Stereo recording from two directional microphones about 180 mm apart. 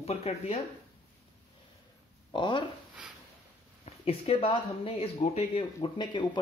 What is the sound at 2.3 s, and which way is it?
Speech, 25° left (ahead or behind).